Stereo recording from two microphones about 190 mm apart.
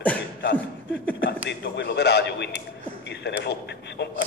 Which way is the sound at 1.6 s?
65° left (ahead or behind).